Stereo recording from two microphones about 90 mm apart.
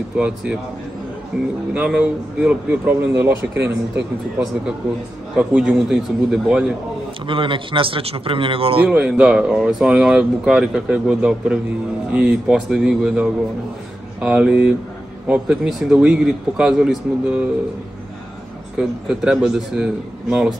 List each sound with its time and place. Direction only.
0.2 s speech: 10° right (ahead or behind)
1.3 s a man's voice: 5° right (ahead or behind); by 4.0 s 25° right (ahead or behind)
5.3 s speech: 10° right (ahead or behind)
7.2 s speech: 70° right (ahead or behind); by 8.8 s 85° right
8.8 s speech: 15° right (ahead or behind)
14.2 s speech: 10° right (ahead or behind)
18.8 s speech: 10° right (ahead or behind)